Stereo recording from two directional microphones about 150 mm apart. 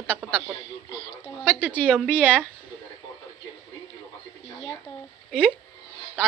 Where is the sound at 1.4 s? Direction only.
10° left (ahead or behind).